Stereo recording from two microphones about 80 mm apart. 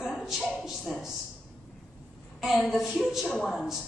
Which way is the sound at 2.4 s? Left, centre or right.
Centre.